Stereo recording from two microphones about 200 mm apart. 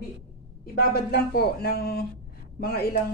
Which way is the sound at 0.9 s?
50° left (ahead or behind).